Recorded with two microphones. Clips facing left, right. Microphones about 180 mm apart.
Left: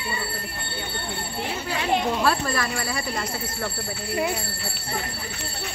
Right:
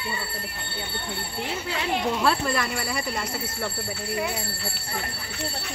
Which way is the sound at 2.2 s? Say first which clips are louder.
Even; 20° right (ahead or behind).